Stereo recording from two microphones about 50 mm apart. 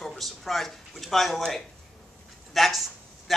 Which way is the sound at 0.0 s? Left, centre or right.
Centre.